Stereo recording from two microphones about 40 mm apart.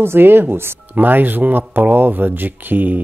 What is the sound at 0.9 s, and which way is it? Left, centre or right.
Speech, right.